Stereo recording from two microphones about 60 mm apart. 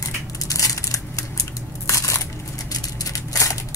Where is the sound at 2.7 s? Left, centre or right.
Left.